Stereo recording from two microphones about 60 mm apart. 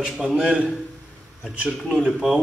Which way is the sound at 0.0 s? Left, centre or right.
Centre.